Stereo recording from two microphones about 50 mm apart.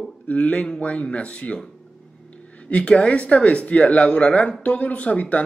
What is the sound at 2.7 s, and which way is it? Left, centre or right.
A man's voice, left.